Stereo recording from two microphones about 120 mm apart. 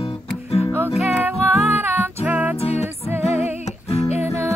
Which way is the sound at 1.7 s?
20° right (ahead or behind).